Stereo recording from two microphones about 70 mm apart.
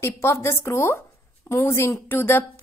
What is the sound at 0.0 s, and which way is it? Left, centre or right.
A woman's voice, left.